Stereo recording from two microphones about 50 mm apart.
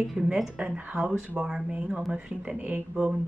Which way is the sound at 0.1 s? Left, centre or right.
Centre.